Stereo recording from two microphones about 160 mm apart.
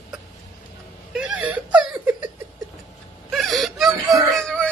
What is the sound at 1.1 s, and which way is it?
Wail, 5° right (ahead or behind).